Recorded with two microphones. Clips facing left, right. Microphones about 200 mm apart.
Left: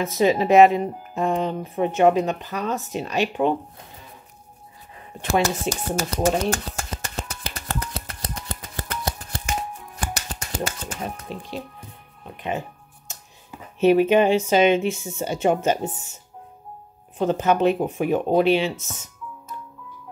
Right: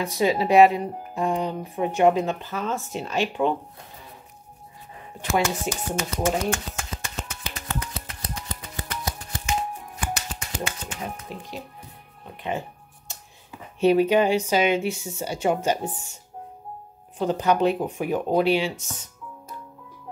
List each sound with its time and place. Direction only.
0.0 s speech: 20° left (ahead or behind)
5.2 s speech: 40° left (ahead or behind)
7.9 s typewriter: 50° left (ahead or behind)
9.9 s finger snapping: 40° left (ahead or behind)
13.9 s speech: 20° left (ahead or behind)
17.2 s speech: 20° left (ahead or behind)